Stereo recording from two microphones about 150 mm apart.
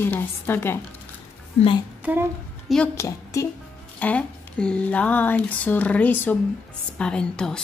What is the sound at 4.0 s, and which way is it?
A woman's voice, 10° left (ahead or behind).